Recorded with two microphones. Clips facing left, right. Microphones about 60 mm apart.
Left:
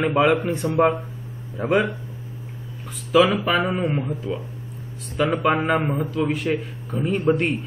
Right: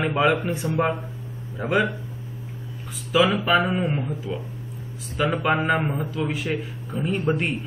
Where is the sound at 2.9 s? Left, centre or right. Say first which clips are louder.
Left 3 dB; centre.